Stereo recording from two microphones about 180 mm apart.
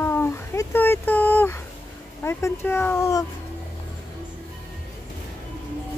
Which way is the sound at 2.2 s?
15° left (ahead or behind).